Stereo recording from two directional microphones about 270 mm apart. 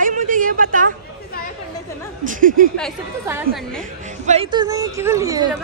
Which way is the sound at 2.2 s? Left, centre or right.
Right.